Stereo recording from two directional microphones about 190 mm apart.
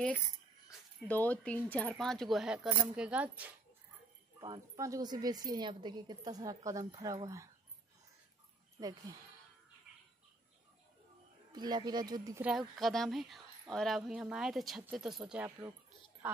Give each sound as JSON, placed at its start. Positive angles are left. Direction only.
{"t": 0.9, "sound": "a woman's voice", "side_deg": 10}
{"t": 4.4, "sound": "speech", "side_deg": -20}
{"t": 8.7, "sound": "speech", "side_deg": -20}
{"t": 11.5, "sound": "speech", "side_deg": -20}
{"t": 12.4, "sound": "a woman's voice", "side_deg": 0}